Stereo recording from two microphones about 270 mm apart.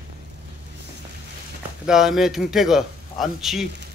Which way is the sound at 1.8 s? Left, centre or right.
Centre.